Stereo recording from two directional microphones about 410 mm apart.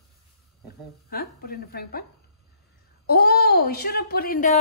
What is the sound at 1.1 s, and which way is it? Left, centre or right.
Speech, left.